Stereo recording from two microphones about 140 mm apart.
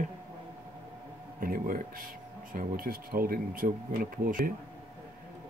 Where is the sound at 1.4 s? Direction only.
90° right.